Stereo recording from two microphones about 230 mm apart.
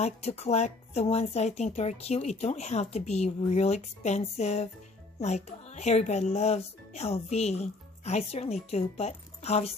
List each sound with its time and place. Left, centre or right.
0.0 s speech: left